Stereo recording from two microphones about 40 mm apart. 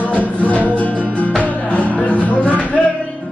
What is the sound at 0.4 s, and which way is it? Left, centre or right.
Music, left.